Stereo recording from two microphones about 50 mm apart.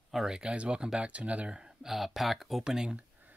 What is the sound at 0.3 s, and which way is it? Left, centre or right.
Speech, centre.